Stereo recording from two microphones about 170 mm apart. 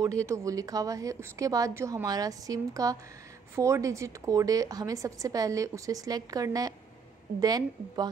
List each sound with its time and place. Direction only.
0.0 s a woman's voice: 20° right (ahead or behind)